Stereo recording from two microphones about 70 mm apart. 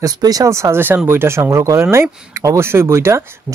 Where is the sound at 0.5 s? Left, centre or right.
Right.